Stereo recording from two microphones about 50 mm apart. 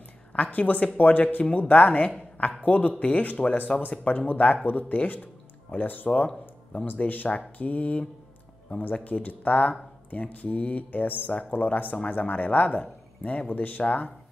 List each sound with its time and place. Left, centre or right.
0.3 s speech: left